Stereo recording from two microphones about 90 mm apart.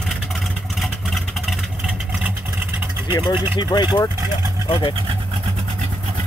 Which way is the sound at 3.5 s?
55° left (ahead or behind).